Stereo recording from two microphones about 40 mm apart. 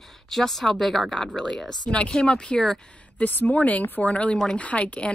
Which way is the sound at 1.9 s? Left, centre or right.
Left.